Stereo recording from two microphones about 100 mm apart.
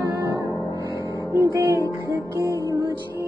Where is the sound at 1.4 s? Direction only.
35° right (ahead or behind).